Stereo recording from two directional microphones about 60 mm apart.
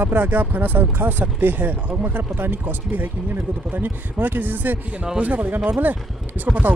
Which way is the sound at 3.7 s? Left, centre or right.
Right.